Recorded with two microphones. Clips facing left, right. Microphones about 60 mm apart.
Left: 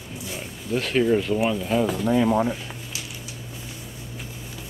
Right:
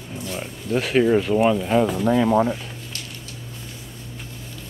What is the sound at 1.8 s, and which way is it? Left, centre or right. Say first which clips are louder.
Speech: right 2 dB; centre.